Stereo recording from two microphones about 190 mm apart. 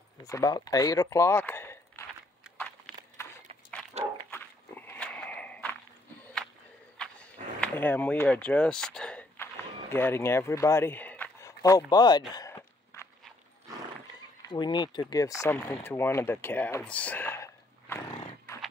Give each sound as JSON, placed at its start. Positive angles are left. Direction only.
{"t": 0.2, "sound": "speech", "side_deg": 20}
{"t": 2.4, "sound": "a sound", "side_deg": -5}
{"t": 2.9, "sound": "horse", "side_deg": 5}
{"t": 3.9, "sound": "dog", "side_deg": -35}
{"t": 4.3, "sound": "horse", "side_deg": 10}
{"t": 6.2, "sound": "a sound", "side_deg": 5}
{"t": 14.5, "sound": "speech", "side_deg": 25}